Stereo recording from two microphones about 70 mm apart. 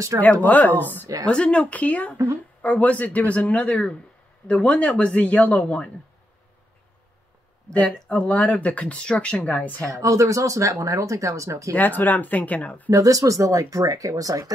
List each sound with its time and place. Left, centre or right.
0.2 s speech: left
1.2 s speech: centre
7.7 s speech: left
9.8 s speech: right
11.7 s speech: left
12.9 s speech: right